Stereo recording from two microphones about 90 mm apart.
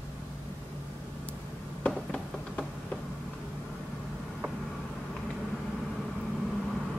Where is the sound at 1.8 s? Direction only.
5° left (ahead or behind).